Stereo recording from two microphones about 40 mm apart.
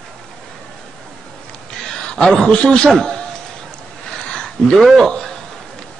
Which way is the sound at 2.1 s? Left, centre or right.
Centre.